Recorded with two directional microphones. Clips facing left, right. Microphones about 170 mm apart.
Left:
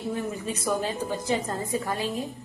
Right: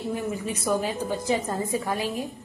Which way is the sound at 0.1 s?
10° right (ahead or behind).